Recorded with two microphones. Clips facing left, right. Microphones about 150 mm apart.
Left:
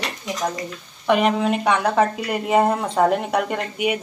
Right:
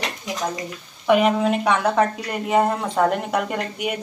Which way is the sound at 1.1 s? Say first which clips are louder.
Right 1 dB; centre (ahead or behind).